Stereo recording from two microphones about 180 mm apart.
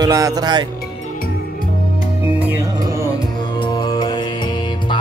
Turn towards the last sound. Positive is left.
turn(degrees=25)  # may be behind; listen again after turning